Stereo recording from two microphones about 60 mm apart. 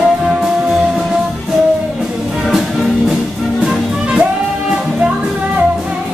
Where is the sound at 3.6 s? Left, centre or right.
Centre.